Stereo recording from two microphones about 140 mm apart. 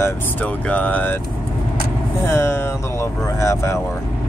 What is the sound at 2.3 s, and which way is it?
Speech, 20° left (ahead or behind).